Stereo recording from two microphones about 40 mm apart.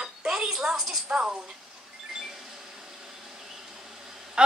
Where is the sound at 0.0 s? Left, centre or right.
Centre.